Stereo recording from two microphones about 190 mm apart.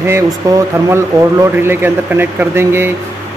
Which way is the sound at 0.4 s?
15° right (ahead or behind).